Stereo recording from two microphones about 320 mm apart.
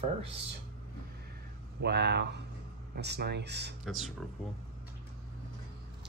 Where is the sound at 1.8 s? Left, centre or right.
Right.